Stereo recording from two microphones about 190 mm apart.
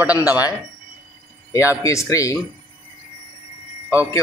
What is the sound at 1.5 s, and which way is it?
Speech, 15° left (ahead or behind).